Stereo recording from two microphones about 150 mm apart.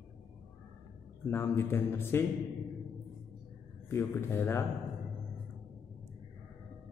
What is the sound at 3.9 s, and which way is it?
Speech, 15° left (ahead or behind).